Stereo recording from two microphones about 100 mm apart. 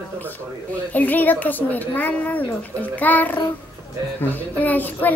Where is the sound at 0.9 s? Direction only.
15° left (ahead or behind).